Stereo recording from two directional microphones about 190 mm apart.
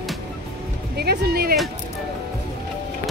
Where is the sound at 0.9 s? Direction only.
55° right (ahead or behind).